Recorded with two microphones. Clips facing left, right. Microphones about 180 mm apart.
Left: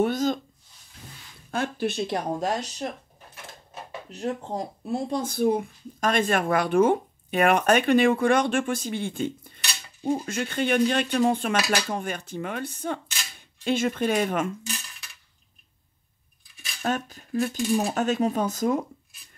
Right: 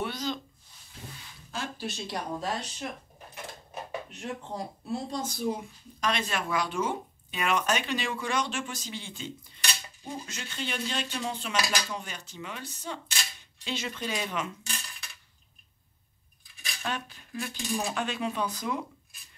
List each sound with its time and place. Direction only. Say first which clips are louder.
0.0 s speech: left 9 dB; 45° left (ahead or behind)
1.5 s speech: left 9 dB; 60° left (ahead or behind)
4.1 s speech: left 7 dB; 35° left (ahead or behind)
16.8 s speech: left 8 dB; 45° left (ahead or behind)